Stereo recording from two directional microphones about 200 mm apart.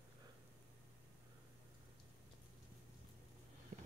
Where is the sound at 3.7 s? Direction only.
35° right (ahead or behind).